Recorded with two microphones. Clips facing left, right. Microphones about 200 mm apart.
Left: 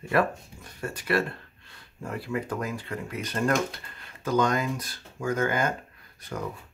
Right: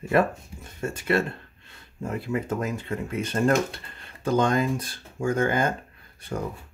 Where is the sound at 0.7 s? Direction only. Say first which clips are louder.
Right 2 dB; 25° right (ahead or behind).